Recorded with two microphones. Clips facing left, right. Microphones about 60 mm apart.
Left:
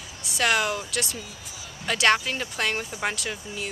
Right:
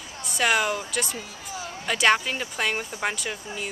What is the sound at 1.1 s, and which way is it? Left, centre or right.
Speech, right.